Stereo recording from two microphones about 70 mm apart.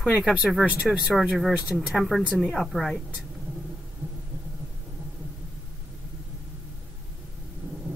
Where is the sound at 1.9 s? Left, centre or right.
Centre.